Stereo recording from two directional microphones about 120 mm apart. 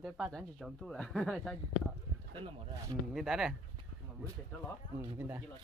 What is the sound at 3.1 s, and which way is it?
Speech, 5° right (ahead or behind).